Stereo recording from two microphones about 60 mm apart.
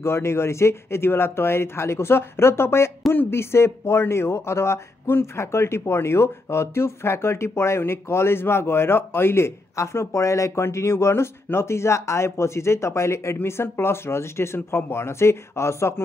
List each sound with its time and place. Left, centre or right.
0.0 s speech: left